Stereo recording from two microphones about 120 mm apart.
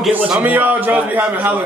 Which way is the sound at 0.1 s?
15° right (ahead or behind).